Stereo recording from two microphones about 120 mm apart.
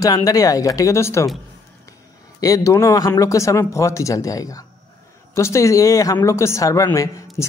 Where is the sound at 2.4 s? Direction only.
25° left (ahead or behind).